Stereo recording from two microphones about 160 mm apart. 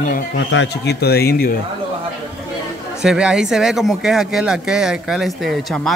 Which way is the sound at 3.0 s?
5° right (ahead or behind).